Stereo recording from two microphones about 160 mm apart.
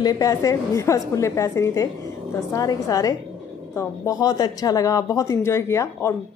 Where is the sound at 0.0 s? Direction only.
20° left (ahead or behind).